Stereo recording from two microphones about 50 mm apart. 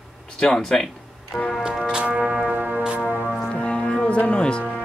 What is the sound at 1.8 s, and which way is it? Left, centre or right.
Music, right.